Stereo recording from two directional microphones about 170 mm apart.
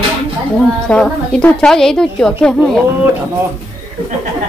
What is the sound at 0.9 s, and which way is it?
Speech, 10° left (ahead or behind).